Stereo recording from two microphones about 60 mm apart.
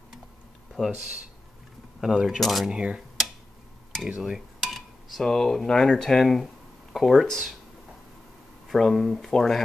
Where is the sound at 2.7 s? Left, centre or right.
Centre.